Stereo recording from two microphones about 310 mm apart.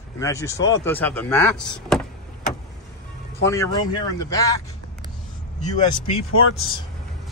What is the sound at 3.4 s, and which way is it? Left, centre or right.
Speech, centre.